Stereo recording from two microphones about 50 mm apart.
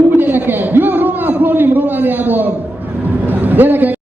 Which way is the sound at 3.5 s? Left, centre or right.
Right.